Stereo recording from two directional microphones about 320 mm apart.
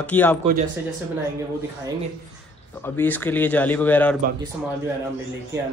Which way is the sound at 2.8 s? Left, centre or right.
Centre.